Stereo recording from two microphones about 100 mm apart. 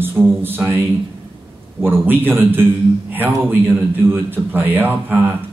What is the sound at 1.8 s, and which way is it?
A man's voice, 20° right (ahead or behind).